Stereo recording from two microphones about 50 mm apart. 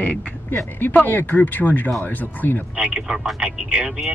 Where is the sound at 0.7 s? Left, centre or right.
Left.